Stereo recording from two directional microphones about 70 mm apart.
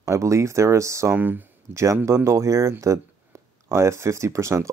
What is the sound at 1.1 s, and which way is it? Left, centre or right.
Speech, right.